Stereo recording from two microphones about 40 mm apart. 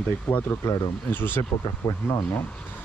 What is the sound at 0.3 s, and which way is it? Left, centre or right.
Speech, left.